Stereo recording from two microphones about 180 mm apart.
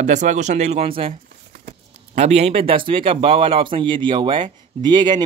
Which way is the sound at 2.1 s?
35° right (ahead or behind).